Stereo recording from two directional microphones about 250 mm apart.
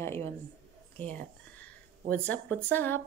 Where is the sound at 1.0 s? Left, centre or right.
Centre.